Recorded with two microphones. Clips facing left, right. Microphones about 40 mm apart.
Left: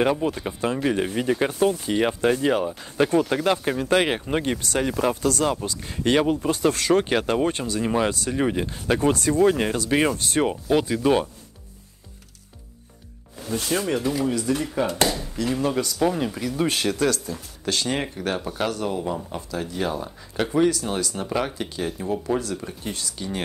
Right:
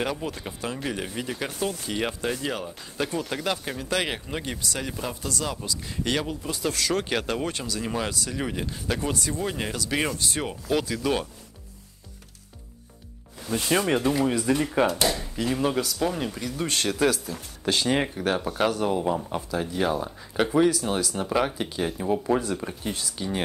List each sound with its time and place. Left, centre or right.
0.2 s speech: centre
2.4 s speech: left
8.1 s speech: left
8.4 s speech: left
9.1 s speech: left
9.5 s speech: left
9.8 s speech: centre
10.1 s speech: left
10.5 s speech: left
13.7 s speech: right; by 17.0 s centre
17.0 s speech: centre